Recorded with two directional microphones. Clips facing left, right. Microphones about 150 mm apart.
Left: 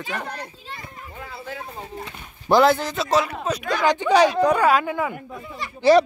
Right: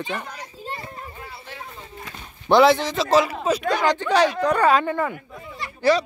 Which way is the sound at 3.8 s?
15° left (ahead or behind).